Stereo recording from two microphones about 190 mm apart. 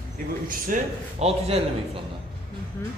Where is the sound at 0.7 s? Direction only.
45° right (ahead or behind).